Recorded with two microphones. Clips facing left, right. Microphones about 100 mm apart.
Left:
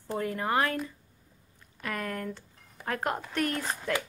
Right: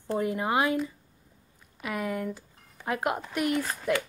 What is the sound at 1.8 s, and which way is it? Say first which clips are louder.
Speech: right 3 dB; 10° right (ahead or behind).